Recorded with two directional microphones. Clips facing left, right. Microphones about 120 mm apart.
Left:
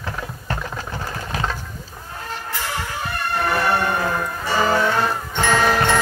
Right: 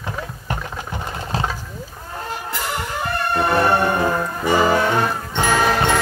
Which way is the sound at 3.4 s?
25° right (ahead or behind).